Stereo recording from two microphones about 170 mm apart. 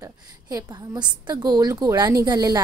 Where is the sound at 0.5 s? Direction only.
25° right (ahead or behind).